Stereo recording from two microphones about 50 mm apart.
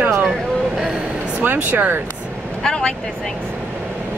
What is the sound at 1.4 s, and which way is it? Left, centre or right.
Speech, right.